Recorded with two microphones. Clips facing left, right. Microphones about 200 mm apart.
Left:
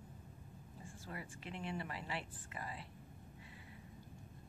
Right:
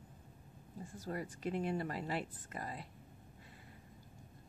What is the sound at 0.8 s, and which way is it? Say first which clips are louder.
A woman's voice: right 8 dB; 40° right (ahead or behind).